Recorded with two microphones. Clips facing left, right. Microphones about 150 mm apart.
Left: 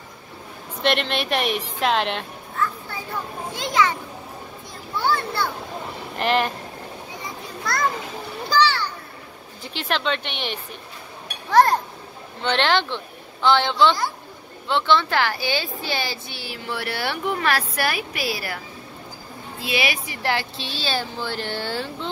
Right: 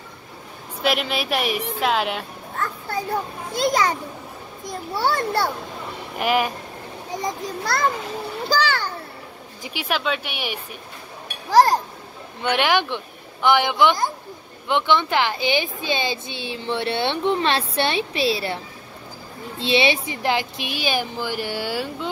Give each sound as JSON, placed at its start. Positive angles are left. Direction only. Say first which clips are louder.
{"t": 0.8, "sound": "a woman's voice", "louder": "even", "side_deg": -5}
{"t": 2.5, "sound": "children playing", "louder": "left 1 dB", "side_deg": -40}
{"t": 3.5, "sound": "a child's voice", "louder": "right 2 dB", "side_deg": -35}
{"t": 5.1, "sound": "a child's voice", "louder": "right 2 dB", "side_deg": -40}
{"t": 6.1, "sound": "speech", "louder": "even", "side_deg": -10}
{"t": 7.2, "sound": "children playing", "louder": "right 11 dB", "side_deg": -35}
{"t": 8.5, "sound": "a sound", "louder": "left 2 dB", "side_deg": -50}
{"t": 9.6, "sound": "speech", "louder": "even", "side_deg": -10}
{"t": 11.5, "sound": "a child's voice", "louder": "right 1 dB", "side_deg": -35}
{"t": 12.4, "sound": "speech", "louder": "right 1 dB", "side_deg": -10}
{"t": 19.6, "sound": "speech", "louder": "right 6 dB", "side_deg": -25}